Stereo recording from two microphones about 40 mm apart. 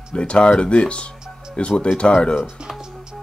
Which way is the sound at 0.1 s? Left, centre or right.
Left.